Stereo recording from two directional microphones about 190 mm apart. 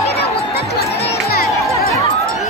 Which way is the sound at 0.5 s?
60° left (ahead or behind).